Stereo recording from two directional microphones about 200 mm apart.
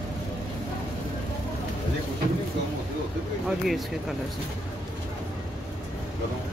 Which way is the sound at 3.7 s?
Centre (ahead or behind).